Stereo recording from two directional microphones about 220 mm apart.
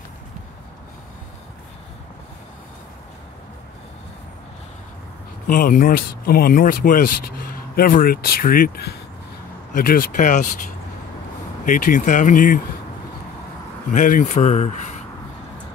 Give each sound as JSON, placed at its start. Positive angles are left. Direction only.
{"t": 5.5, "sound": "speech", "side_deg": 40}
{"t": 11.6, "sound": "speech", "side_deg": 40}
{"t": 13.8, "sound": "speech", "side_deg": 40}